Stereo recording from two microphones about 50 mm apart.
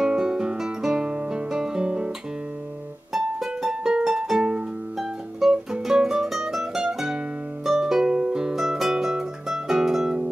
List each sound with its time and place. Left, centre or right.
0.0 s music: centre
3.1 s music: centre